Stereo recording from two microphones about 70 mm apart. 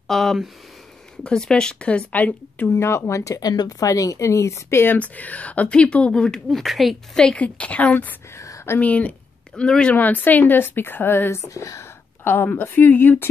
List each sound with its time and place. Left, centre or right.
0.1 s speech: centre; by 2.7 s left
2.7 s speech: left
4.9 s speech: left; by 7.0 s centre
7.2 s a woman's voice: centre
8.4 s a sound: left
8.7 s a woman's voice: left
9.9 s a woman's voice: left
11.4 s speech: left
12.3 s a woman's voice: left